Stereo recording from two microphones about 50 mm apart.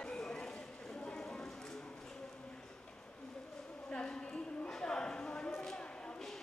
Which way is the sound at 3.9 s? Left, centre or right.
Centre.